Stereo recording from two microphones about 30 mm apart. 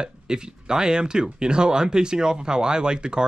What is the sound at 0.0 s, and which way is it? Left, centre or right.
Speech, right.